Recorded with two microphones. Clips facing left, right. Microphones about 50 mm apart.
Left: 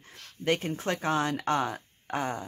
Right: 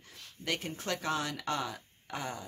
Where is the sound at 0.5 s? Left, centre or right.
Left.